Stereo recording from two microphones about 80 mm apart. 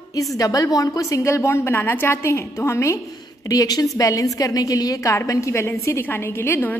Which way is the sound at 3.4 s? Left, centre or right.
Left.